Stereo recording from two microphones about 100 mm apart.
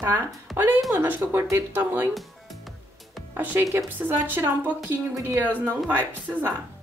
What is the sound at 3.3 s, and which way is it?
Speech, 20° right (ahead or behind).